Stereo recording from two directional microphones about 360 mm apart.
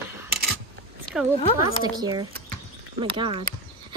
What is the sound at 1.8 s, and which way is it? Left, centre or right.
Speech, centre.